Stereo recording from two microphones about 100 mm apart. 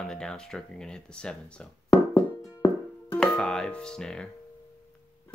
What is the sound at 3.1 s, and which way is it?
Speech, 5° left (ahead or behind).